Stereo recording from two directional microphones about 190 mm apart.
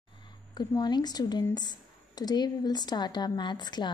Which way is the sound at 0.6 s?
20° left (ahead or behind).